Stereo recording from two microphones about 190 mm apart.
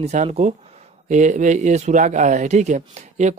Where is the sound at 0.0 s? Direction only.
35° right (ahead or behind).